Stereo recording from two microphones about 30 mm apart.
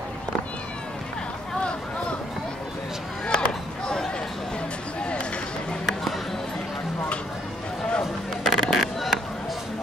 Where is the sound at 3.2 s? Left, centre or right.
Left.